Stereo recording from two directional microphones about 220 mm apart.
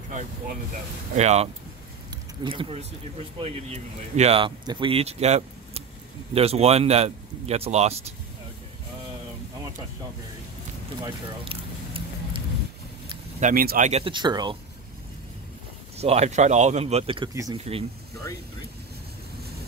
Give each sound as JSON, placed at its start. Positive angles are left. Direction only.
{"t": 1.1, "sound": "speech", "side_deg": -30}
{"t": 11.0, "sound": "a sound", "side_deg": -25}
{"t": 13.4, "sound": "speech", "side_deg": -40}
{"t": 16.0, "sound": "speech", "side_deg": -30}
{"t": 17.3, "sound": "speech", "side_deg": -15}